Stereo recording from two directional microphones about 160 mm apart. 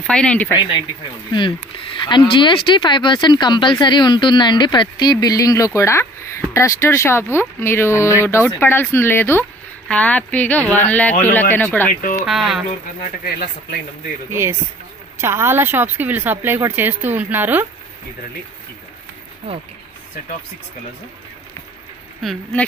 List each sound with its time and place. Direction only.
0.0 s speech: 5° left (ahead or behind)
0.6 s speech: 30° left (ahead or behind)
2.0 s speech: 30° left (ahead or behind); by 11.9 s 10° left (ahead or behind)
12.3 s speech: centre (ahead or behind)
12.6 s speech: 60° left (ahead or behind)
14.3 s speech: 15° right (ahead or behind)
22.2 s speech: 5° left (ahead or behind)